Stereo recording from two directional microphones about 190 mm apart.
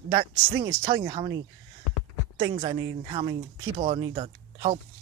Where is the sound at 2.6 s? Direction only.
25° right (ahead or behind).